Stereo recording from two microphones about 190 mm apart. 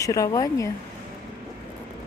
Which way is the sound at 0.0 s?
15° left (ahead or behind).